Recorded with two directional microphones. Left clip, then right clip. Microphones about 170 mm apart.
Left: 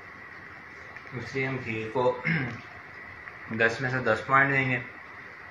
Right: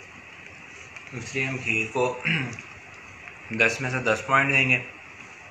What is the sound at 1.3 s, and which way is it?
A man's voice, 25° right (ahead or behind).